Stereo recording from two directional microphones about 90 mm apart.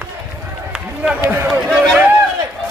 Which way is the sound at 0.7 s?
10° right (ahead or behind).